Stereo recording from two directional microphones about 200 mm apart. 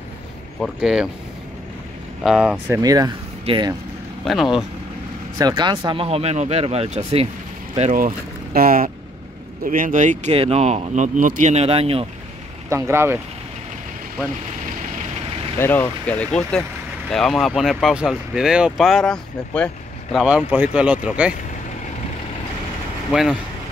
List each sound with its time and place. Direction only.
0.6 s speech: 5° right (ahead or behind)
2.2 s speech: 5° right (ahead or behind)
2.8 s speech: 20° right (ahead or behind)
4.2 s speech: centre (ahead or behind)
5.4 s speech: 20° right (ahead or behind)
8.5 s speech: 45° right (ahead or behind); by 12.1 s 30° right (ahead or behind)
12.6 s speech: 15° right (ahead or behind)
15.6 s speech: 10° left (ahead or behind); by 21.3 s 5° right (ahead or behind)